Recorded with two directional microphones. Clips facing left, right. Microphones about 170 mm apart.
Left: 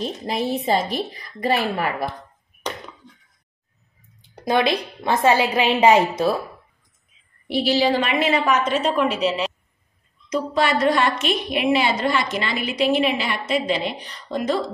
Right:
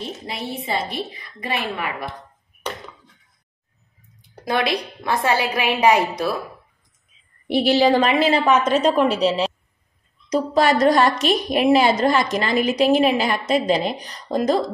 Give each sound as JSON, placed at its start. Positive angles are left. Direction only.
{"t": 0.3, "sound": "a woman's voice", "side_deg": 40}
{"t": 4.2, "sound": "a woman's voice", "side_deg": 20}
{"t": 7.5, "sound": "a woman's voice", "side_deg": -55}
{"t": 8.0, "sound": "a woman's voice", "side_deg": -30}